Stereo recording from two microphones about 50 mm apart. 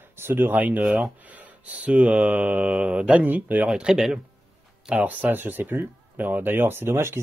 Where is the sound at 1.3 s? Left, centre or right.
Right.